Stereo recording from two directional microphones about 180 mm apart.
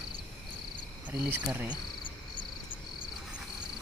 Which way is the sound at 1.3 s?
10° right (ahead or behind).